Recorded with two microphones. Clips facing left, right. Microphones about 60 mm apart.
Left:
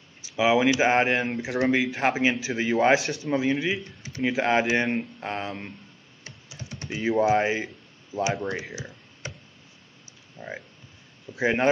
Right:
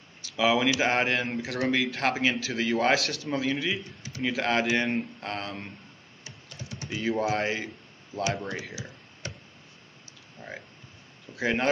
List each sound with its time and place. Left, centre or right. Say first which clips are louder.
0.5 s speech: left 4 dB; centre
2.5 s speech: left 4 dB; centre
4.2 s speech: left 4 dB; centre
6.5 s typing: left 1 dB; centre
6.9 s speech: left 5 dB; centre
8.4 s speech: left 4 dB; centre
10.4 s speech: left 4 dB; centre